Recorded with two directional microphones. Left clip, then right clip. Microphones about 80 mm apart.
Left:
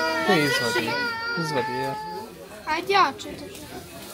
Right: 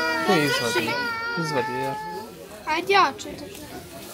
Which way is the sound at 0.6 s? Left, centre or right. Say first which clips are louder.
Even; centre.